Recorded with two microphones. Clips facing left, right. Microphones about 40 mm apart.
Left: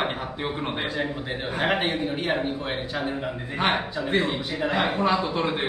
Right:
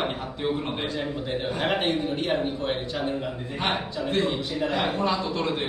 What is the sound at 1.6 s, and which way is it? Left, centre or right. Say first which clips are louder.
Speech: left 2 dB; centre.